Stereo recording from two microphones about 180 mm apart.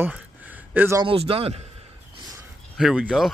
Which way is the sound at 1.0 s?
30° right (ahead or behind).